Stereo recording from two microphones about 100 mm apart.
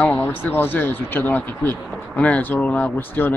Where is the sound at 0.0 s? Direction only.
20° left (ahead or behind).